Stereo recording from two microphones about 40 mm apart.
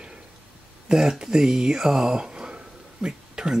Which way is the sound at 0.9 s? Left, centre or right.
Centre.